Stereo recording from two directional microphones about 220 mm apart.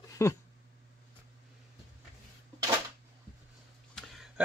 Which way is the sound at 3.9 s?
Centre (ahead or behind).